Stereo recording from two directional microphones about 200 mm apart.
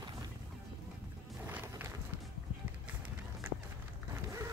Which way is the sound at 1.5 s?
10° right (ahead or behind).